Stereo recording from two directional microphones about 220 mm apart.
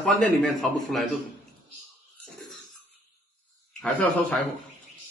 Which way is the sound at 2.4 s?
Centre (ahead or behind).